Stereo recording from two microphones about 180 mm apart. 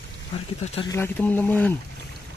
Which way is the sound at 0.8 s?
15° left (ahead or behind).